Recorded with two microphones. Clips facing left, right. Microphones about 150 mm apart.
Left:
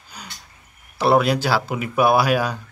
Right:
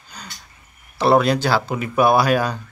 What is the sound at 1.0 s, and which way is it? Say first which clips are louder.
Speech: right 1 dB; 5° left (ahead or behind).